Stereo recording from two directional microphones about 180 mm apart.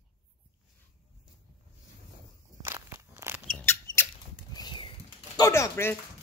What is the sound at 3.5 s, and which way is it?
Squeak, 15° left (ahead or behind).